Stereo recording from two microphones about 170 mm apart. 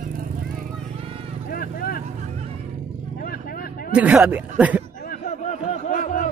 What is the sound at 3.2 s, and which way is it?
Vehicle, 60° left (ahead or behind).